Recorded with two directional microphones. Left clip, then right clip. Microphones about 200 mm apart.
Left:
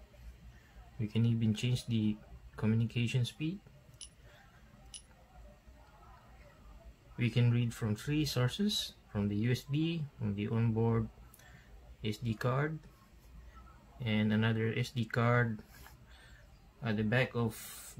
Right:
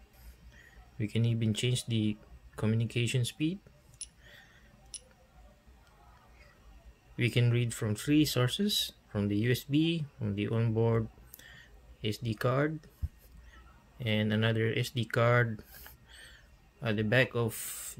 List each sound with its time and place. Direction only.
0.9 s speech: 25° right (ahead or behind)
7.2 s speech: 30° right (ahead or behind)
13.9 s speech: 25° right (ahead or behind)
16.8 s speech: 30° right (ahead or behind)